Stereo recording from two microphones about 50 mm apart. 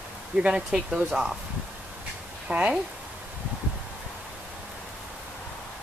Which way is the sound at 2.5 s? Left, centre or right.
Right.